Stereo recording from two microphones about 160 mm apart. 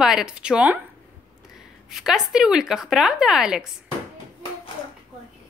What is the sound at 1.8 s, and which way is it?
Speech, 5° right (ahead or behind).